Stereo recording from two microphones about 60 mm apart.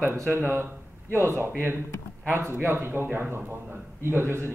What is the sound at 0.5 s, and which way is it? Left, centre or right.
A man's voice, right.